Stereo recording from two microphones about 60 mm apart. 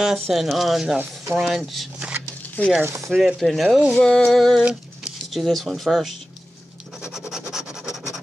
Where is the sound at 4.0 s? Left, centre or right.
Centre.